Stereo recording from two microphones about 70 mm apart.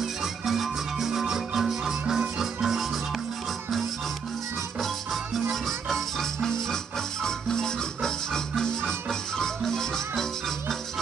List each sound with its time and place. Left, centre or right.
0.0 s music: centre
4.7 s music: centre